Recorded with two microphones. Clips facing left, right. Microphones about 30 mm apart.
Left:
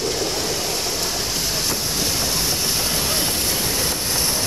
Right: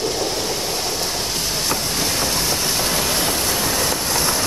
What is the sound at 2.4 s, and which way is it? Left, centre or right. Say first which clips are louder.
Train: right 2 dB; right.